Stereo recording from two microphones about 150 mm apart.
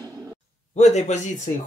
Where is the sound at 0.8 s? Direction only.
50° left (ahead or behind).